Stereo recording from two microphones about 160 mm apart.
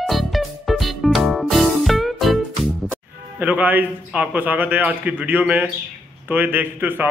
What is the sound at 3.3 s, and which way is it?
A man's voice, 10° right (ahead or behind).